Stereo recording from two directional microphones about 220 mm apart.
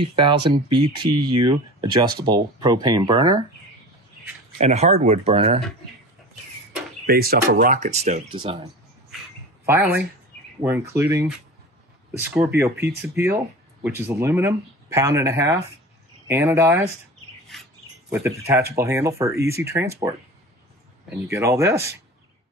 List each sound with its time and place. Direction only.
0.0 s speech: 20° right (ahead or behind)
4.6 s speech: 30° right (ahead or behind)
7.1 s speech: 45° right (ahead or behind); by 8.6 s 25° right (ahead or behind)
9.7 s speech: 10° right (ahead or behind)
12.4 s speech: 10° right (ahead or behind)
18.1 s speech: 10° right (ahead or behind)
21.3 s speech: 15° right (ahead or behind)